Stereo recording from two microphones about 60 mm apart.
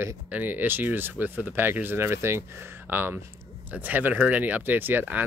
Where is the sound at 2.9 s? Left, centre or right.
Right.